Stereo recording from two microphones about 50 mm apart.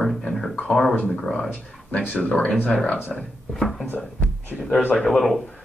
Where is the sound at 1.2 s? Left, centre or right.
Centre.